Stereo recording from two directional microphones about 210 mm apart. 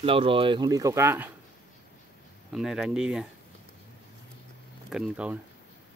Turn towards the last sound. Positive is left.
turn(degrees=-5)  # may be behind; listen again after turning